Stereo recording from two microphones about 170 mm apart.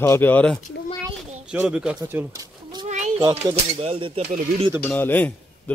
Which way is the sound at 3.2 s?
15° right (ahead or behind).